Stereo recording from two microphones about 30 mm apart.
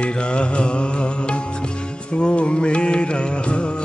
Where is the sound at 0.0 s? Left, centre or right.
Left.